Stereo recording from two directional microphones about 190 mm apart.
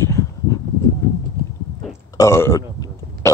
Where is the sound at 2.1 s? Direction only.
15° left (ahead or behind).